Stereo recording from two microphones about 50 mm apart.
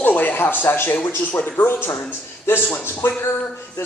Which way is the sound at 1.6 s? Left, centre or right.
Left.